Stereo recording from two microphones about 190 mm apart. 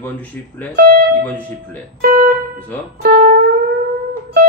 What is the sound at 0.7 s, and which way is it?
Speech, 55° right (ahead or behind).